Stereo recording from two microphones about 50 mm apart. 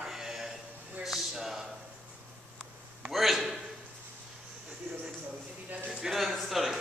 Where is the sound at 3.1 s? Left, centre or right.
Centre.